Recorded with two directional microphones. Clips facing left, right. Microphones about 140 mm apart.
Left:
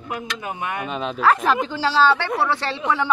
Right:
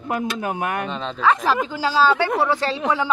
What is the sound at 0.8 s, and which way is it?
Speech, 10° left (ahead or behind).